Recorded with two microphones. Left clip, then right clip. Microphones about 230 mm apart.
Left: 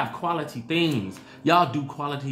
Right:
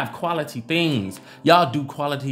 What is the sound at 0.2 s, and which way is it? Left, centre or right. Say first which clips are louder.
Speech: right 3 dB; right.